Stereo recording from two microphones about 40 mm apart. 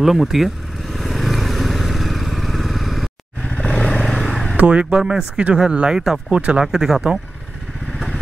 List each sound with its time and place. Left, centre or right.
0.0 s speech: centre
0.9 s motorcycle: centre
3.6 s vehicle: centre
4.6 s speech: right
5.0 s speech: centre
6.3 s speech: right
6.6 s speech: centre